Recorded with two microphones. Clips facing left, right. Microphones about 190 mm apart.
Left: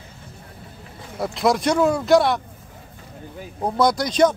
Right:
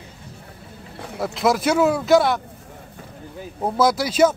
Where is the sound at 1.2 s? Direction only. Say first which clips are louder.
Even; centre (ahead or behind).